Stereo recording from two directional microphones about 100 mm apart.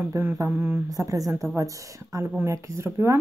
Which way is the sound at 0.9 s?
35° right (ahead or behind).